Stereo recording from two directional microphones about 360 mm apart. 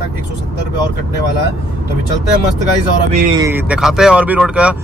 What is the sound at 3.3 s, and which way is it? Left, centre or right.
Speech, centre.